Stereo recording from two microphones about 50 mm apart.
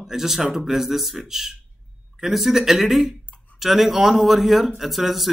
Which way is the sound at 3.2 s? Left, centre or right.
Left.